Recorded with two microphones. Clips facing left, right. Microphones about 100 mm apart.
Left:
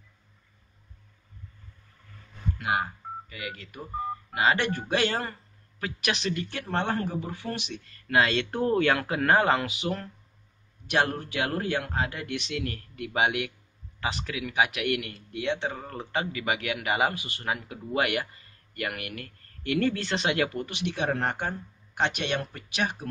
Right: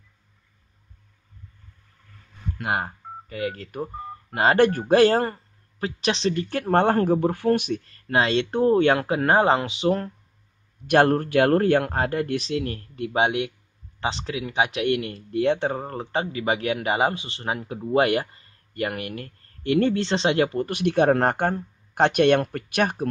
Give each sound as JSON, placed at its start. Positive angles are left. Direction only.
{"t": 2.6, "sound": "speech", "side_deg": -45}
{"t": 5.9, "sound": "speech", "side_deg": -30}
{"t": 6.5, "sound": "speech", "side_deg": -45}
{"t": 10.9, "sound": "speech", "side_deg": -50}
{"t": 20.6, "sound": "speech", "side_deg": -50}